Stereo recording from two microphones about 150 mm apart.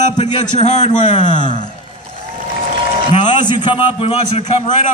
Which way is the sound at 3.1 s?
30° left (ahead or behind).